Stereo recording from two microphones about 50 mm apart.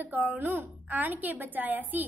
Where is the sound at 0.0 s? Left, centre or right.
Right.